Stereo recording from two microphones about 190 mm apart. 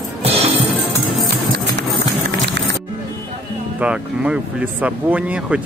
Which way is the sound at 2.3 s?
70° right (ahead or behind).